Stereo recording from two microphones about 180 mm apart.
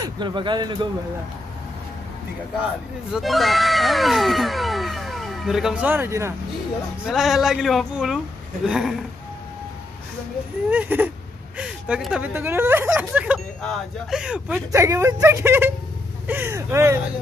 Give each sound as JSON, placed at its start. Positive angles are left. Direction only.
{"t": 0.0, "sound": "speech", "side_deg": -25}
{"t": 3.1, "sound": "speech", "side_deg": 0}
{"t": 7.1, "sound": "speech", "side_deg": 0}
{"t": 10.7, "sound": "speech", "side_deg": -10}
{"t": 14.7, "sound": "speech", "side_deg": -15}